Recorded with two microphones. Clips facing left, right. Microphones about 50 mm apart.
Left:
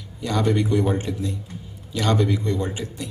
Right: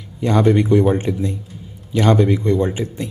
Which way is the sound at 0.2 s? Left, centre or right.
Right.